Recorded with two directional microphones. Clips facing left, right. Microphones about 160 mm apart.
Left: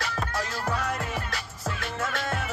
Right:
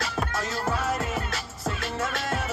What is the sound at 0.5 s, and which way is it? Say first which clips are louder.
Music: right 2 dB; 5° right (ahead or behind).